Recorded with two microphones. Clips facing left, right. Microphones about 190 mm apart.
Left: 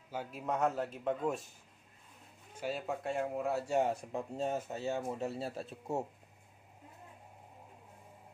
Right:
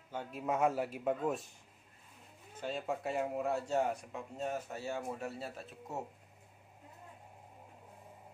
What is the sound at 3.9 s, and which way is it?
Speech, 30° left (ahead or behind).